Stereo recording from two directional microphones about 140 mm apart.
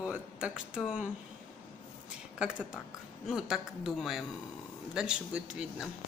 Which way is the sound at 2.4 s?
5° right (ahead or behind).